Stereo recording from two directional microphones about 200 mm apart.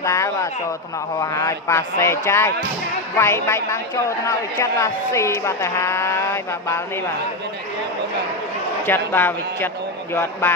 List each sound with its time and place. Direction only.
0.0 s a woman's voice: 15° left (ahead or behind)
8.8 s a woman's voice: 10° left (ahead or behind)